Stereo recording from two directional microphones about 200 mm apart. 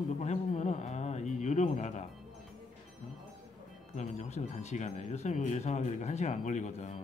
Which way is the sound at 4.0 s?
35° left (ahead or behind).